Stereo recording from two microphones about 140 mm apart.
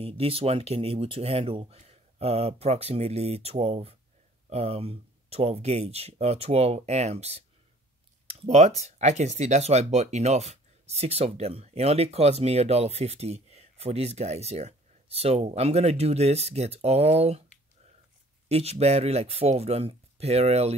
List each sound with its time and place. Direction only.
0.0 s speech: 45° right (ahead or behind)
18.5 s speech: 50° right (ahead or behind)